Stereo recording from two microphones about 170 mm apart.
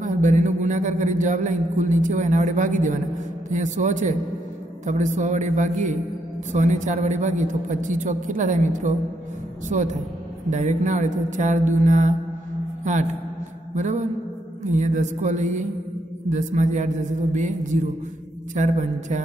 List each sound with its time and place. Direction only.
0.0 s a man's voice: 45° right (ahead or behind)
13.7 s a man's voice: 45° right (ahead or behind)
18.5 s a man's voice: 45° right (ahead or behind)